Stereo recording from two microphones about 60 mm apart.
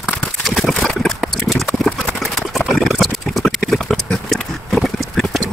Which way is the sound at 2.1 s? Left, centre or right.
Centre.